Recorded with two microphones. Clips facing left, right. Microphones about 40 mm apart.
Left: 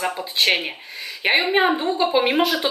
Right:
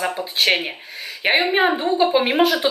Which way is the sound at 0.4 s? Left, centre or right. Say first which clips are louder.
Right 1 dB; centre.